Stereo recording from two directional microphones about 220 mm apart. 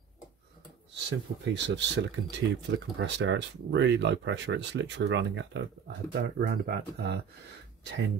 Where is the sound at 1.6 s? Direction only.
55° right (ahead or behind).